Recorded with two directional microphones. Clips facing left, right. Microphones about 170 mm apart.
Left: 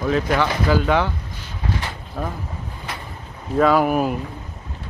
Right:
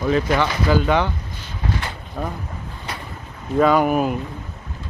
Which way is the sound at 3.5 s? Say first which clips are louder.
Even; centre (ahead or behind).